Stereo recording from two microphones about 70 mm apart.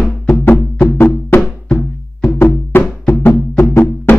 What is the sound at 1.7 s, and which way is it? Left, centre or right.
Music, left.